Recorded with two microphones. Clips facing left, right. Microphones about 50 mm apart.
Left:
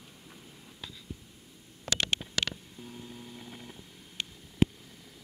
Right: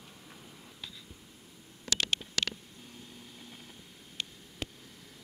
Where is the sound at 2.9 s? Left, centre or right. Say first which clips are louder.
Left 6 dB; centre.